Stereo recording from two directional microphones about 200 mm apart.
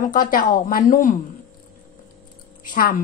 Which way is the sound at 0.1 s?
45° left (ahead or behind).